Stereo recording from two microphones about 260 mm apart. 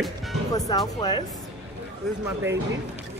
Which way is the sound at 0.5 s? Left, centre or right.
Centre.